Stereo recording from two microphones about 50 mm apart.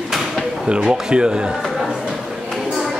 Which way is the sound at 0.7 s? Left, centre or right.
Centre.